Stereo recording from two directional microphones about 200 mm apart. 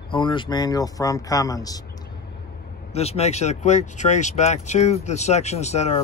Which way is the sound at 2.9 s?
30° left (ahead or behind).